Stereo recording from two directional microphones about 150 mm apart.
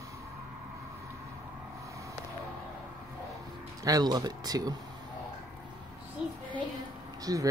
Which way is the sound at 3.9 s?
25° right (ahead or behind).